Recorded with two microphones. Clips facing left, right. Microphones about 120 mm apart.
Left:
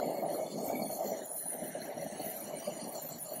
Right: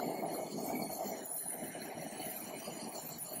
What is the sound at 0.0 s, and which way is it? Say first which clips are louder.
Vehicle: left 4 dB; centre (ahead or behind).